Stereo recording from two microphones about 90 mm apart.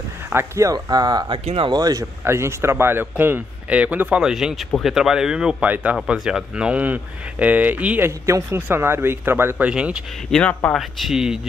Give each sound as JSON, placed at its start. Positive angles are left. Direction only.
{"t": 0.3, "sound": "speech", "side_deg": -30}
{"t": 0.7, "sound": "speech", "side_deg": -45}
{"t": 1.3, "sound": "speech", "side_deg": -75}
{"t": 1.8, "sound": "speech", "side_deg": -45}
{"t": 2.2, "sound": "speech", "side_deg": -30}
{"t": 4.2, "sound": "speech", "side_deg": -5}
{"t": 8.3, "sound": "speech", "side_deg": -30}
{"t": 9.7, "sound": "speech", "side_deg": -10}
{"t": 10.3, "sound": "speech", "side_deg": 15}
{"t": 10.7, "sound": "speech", "side_deg": 0}